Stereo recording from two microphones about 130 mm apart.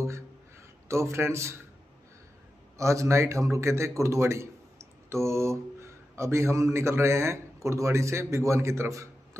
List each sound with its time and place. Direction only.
0.8 s a man's voice: 20° right (ahead or behind)
2.8 s a man's voice: 25° right (ahead or behind)